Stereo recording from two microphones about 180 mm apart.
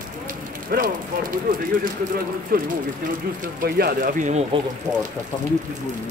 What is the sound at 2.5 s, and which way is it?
Speech, 55° right (ahead or behind).